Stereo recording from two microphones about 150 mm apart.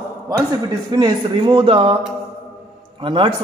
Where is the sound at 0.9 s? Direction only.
30° right (ahead or behind).